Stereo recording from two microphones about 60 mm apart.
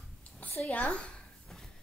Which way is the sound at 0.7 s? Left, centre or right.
Left.